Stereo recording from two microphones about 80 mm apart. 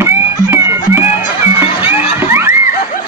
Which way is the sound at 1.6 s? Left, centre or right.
Right.